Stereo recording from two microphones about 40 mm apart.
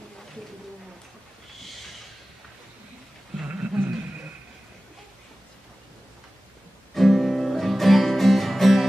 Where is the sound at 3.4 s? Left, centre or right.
Right.